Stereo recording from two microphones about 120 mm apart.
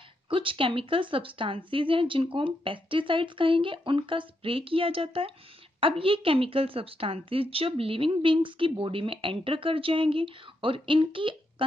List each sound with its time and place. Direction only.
0.3 s a woman's voice: 45° right (ahead or behind)